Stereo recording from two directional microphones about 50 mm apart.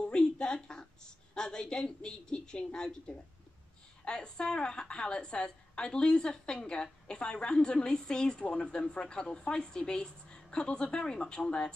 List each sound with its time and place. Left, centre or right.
0.4 s a woman's voice: centre